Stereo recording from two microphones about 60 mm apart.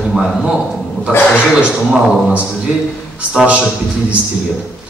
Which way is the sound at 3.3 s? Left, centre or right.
Centre.